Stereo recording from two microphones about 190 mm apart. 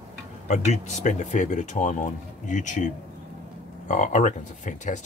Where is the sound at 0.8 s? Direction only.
40° left (ahead or behind).